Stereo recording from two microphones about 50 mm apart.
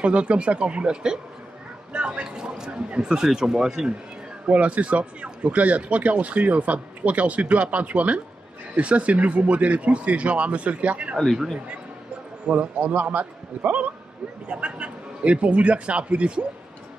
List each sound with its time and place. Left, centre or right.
0.0 s speech: right
1.9 s a sound: right
2.9 s speech: centre
4.5 s speech: right
12.4 s a man's voice: right